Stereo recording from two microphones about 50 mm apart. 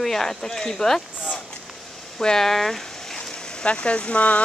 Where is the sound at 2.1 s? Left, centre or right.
Centre.